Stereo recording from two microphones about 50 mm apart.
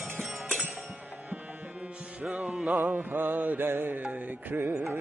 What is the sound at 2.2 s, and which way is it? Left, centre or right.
Music, right.